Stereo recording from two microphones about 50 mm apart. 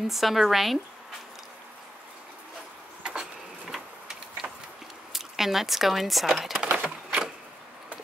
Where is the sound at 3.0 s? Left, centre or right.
Centre.